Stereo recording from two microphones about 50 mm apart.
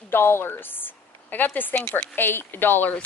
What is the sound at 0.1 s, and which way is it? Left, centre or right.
A woman's voice, left.